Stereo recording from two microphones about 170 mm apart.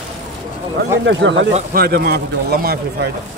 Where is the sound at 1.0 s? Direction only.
90° right.